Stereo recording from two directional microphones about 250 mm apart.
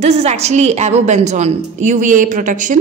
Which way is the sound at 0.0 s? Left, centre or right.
Right.